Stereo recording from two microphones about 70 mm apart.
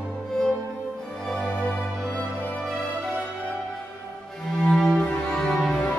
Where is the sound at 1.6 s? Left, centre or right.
Centre.